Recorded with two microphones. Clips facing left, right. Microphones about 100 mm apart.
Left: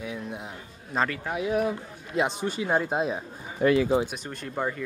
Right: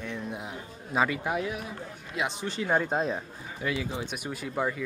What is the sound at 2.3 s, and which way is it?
Speech, 15° left (ahead or behind).